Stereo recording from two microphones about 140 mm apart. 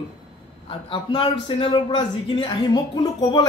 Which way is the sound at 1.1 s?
35° left (ahead or behind).